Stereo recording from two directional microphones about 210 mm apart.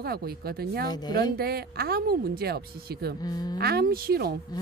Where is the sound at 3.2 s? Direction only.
20° left (ahead or behind).